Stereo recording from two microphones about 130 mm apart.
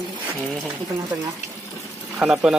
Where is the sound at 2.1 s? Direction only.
5° right (ahead or behind).